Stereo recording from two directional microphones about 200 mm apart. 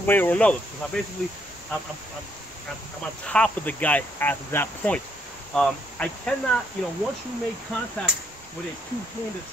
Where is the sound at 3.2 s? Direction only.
5° left (ahead or behind).